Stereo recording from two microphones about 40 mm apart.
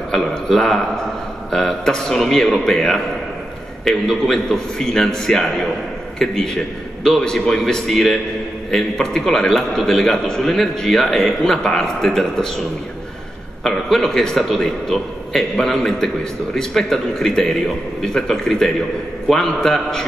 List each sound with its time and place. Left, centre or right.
0.1 s a man's voice: centre
8.7 s a man's voice: centre
13.7 s a man's voice: centre